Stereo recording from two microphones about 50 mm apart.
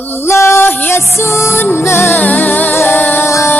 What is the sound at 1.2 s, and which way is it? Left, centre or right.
Music, left.